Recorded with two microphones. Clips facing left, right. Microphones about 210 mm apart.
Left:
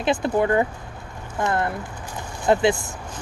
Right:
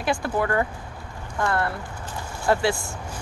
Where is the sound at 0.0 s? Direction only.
20° left (ahead or behind).